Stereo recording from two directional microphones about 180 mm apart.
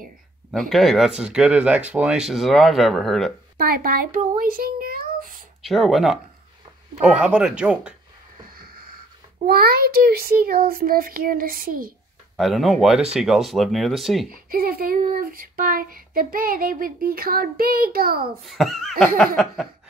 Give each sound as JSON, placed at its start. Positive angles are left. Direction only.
{"t": 0.5, "sound": "speech", "side_deg": 0}
{"t": 3.5, "sound": "speech", "side_deg": -55}
{"t": 5.7, "sound": "speech", "side_deg": 0}
{"t": 8.5, "sound": "a sound", "side_deg": -55}
{"t": 9.5, "sound": "speech", "side_deg": -60}
{"t": 12.4, "sound": "speech", "side_deg": 0}
{"t": 14.3, "sound": "speech", "side_deg": -55}
{"t": 18.4, "sound": "speech", "side_deg": 0}